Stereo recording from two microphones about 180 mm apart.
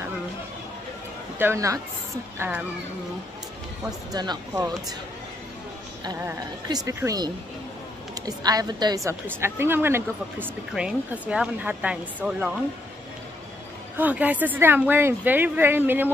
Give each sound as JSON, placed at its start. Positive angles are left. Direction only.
{"t": 1.4, "sound": "a woman's voice", "side_deg": -15}
{"t": 4.1, "sound": "a woman's voice", "side_deg": -20}
{"t": 6.0, "sound": "a woman's voice", "side_deg": -20}
{"t": 13.9, "sound": "a woman's voice", "side_deg": -10}